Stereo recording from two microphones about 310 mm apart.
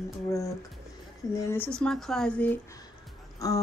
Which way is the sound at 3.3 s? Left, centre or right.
Centre.